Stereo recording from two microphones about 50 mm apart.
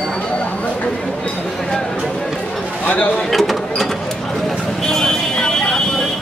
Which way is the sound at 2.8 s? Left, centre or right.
Left.